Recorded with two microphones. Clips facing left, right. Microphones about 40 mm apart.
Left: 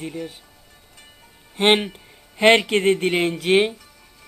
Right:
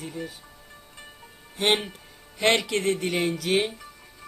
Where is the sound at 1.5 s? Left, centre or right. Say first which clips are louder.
Left 6 dB; left.